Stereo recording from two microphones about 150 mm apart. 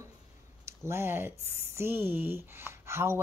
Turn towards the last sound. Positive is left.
turn(degrees=-15)  # may be behind; listen again after turning